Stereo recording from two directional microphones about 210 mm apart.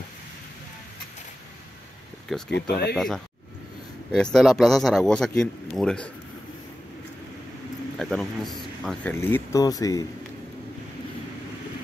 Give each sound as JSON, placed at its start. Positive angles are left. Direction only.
{"t": 2.2, "sound": "speech", "side_deg": 0}
{"t": 2.5, "sound": "speech", "side_deg": 50}
{"t": 4.1, "sound": "speech", "side_deg": 0}
{"t": 8.0, "sound": "speech", "side_deg": 0}